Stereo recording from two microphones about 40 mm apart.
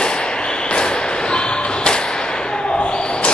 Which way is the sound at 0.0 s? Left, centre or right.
Left.